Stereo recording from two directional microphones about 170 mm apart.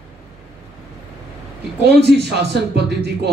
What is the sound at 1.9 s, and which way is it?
Speech, 80° right.